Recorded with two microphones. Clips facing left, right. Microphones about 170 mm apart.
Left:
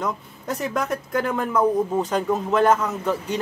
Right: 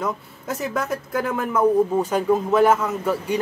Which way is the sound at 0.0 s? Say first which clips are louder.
Right 1 dB; 5° right (ahead or behind).